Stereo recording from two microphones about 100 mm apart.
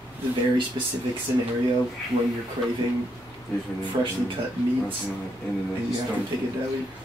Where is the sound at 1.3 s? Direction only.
25° right (ahead or behind).